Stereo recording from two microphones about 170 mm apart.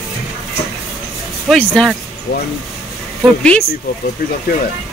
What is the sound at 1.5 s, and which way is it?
Speech, 5° left (ahead or behind).